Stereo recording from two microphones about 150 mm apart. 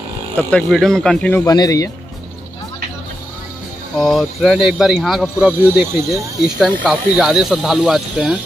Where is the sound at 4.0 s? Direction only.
Centre (ahead or behind).